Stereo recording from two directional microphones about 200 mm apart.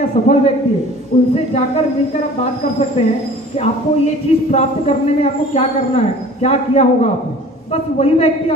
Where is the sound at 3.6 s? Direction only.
30° left (ahead or behind).